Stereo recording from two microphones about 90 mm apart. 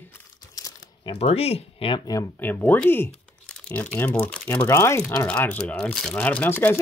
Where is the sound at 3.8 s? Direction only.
15° left (ahead or behind).